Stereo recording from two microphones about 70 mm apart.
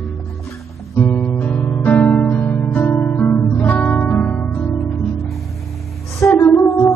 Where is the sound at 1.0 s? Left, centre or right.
Centre.